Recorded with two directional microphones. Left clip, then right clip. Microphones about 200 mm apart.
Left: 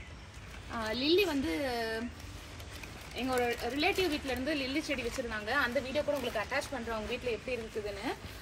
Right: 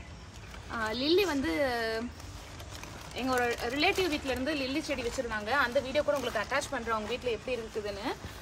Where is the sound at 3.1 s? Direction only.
5° right (ahead or behind).